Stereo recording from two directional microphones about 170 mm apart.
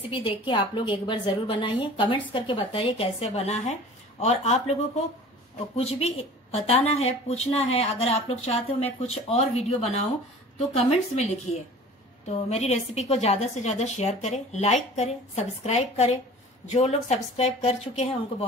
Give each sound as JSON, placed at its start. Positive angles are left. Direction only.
{"t": 0.1, "sound": "a woman's voice", "side_deg": 30}